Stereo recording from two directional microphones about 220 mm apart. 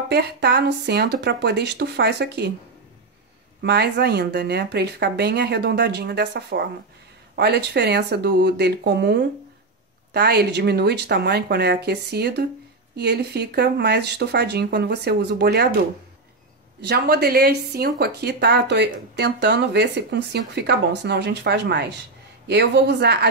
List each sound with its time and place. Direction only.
0.1 s speech: 50° right (ahead or behind)
3.6 s speech: 50° right (ahead or behind)
16.8 s speech: 45° right (ahead or behind)